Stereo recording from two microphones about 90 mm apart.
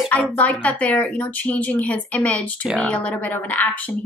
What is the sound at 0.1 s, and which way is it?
Speech, 15° left (ahead or behind).